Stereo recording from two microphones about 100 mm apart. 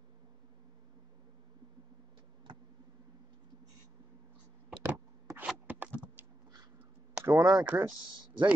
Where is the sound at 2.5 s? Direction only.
55° right (ahead or behind).